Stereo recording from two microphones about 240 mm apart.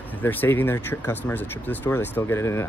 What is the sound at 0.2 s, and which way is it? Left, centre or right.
Speech, centre.